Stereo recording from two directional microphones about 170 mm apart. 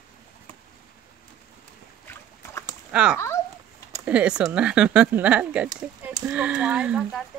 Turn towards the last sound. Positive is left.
turn(degrees=-5)  # may be behind; listen again after turning